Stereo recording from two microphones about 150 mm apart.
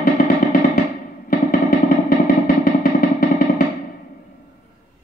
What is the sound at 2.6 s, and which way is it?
Music, 85° left.